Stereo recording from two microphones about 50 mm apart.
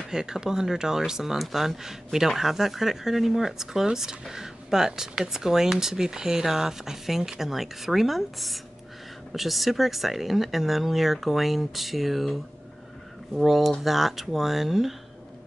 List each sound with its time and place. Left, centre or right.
0.1 s speech: centre
13.4 s speech: centre